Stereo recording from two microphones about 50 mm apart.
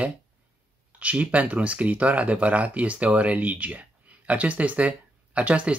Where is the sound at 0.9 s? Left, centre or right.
Right.